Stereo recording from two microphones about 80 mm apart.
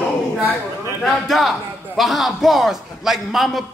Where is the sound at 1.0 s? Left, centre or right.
Centre.